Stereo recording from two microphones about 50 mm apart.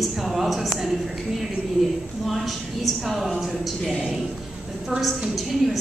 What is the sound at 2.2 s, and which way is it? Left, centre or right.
A woman's voice, centre.